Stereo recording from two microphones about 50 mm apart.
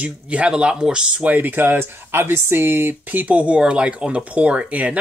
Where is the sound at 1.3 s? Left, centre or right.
Right.